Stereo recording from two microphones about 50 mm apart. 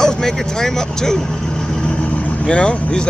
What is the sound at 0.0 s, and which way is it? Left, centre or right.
Speech, centre.